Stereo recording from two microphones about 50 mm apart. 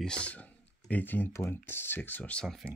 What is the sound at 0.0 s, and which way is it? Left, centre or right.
Speech, centre.